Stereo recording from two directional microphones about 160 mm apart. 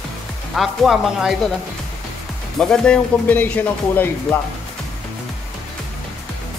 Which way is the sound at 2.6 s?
5° left (ahead or behind).